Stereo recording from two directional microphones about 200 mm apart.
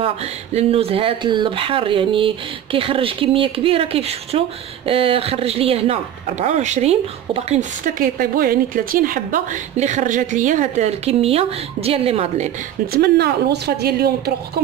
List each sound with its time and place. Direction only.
0.0 s speech: 30° right (ahead or behind)
12.8 s speech: 50° right (ahead or behind)